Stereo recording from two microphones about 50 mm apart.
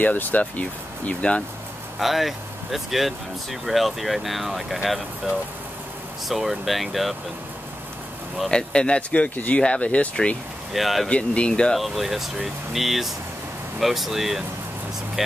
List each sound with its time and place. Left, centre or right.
0.0 s speech: left
2.0 s speech: centre
6.2 s speech: centre
8.5 s speech: centre
10.7 s speech: centre
11.1 s speech: left
11.7 s speech: centre